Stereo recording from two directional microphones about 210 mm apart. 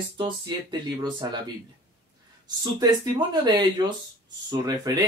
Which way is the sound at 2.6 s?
20° right (ahead or behind).